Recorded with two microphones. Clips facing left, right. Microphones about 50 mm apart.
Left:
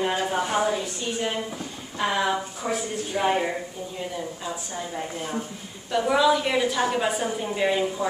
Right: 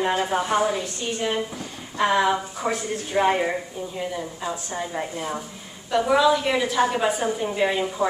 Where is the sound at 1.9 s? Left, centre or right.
Centre.